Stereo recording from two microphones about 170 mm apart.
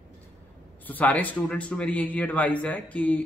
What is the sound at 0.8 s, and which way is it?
A man's voice, 10° left (ahead or behind).